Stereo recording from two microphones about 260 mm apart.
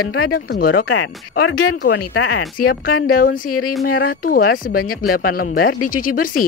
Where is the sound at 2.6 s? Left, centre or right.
Left.